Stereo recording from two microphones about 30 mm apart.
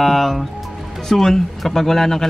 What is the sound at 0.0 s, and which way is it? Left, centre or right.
A man's voice, centre.